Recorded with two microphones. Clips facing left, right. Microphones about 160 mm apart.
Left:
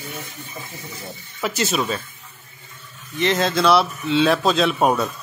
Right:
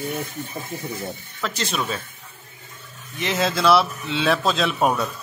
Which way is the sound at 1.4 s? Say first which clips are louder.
Left 4 dB; 5° left (ahead or behind).